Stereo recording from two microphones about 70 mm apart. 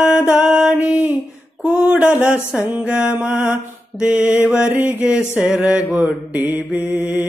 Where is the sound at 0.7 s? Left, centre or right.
Right.